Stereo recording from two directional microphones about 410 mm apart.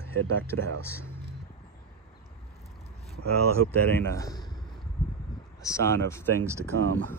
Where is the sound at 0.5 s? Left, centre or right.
Right.